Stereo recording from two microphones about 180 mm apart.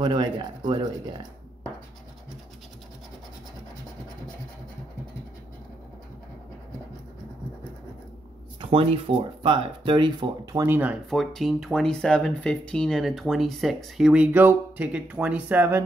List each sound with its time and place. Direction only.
0.0 s speech: 25° right (ahead or behind)
8.5 s speech: 30° right (ahead or behind); by 11.0 s 10° right (ahead or behind)
11.1 s speech: centre (ahead or behind)